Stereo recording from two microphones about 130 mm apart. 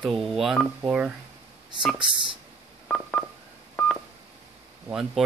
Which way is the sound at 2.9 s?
5° left (ahead or behind).